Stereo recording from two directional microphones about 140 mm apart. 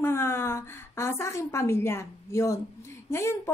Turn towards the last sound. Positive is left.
turn(degrees=20)  # may be behind; listen again after turning